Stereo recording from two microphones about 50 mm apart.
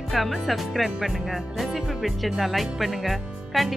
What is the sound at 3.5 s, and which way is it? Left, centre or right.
Speech, centre.